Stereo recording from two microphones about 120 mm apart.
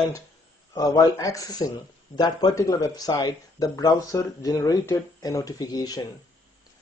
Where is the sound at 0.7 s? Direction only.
30° left (ahead or behind).